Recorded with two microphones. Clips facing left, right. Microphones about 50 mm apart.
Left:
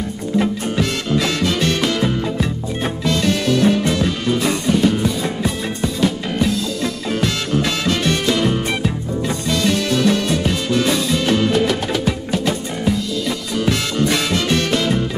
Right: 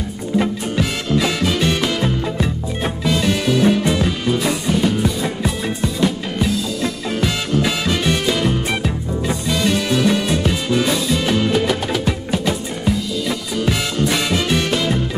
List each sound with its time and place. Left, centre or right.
1.2 s music: centre